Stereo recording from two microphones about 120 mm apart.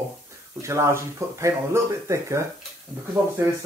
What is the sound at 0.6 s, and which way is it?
Speech, 25° right (ahead or behind).